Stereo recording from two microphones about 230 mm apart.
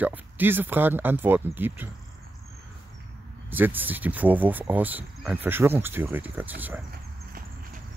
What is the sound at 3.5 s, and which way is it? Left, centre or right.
Speech, centre.